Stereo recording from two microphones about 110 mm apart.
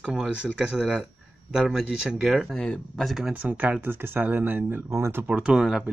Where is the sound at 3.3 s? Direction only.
15° right (ahead or behind).